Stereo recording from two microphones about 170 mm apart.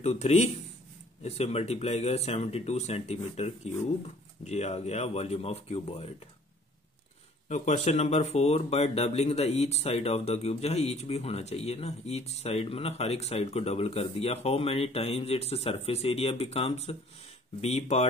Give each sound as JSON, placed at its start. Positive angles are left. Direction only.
{"t": 0.0, "sound": "speech", "side_deg": 40}
{"t": 7.4, "sound": "speech", "side_deg": 40}